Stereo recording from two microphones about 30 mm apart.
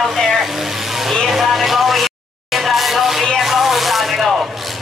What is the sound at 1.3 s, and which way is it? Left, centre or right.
Music, centre.